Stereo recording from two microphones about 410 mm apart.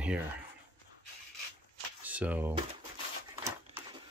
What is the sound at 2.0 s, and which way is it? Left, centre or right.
Speech, centre.